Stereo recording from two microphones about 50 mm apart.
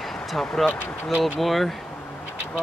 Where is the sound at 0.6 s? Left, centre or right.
Centre.